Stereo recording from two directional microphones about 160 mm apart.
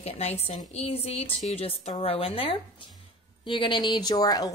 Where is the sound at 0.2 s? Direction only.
40° left (ahead or behind).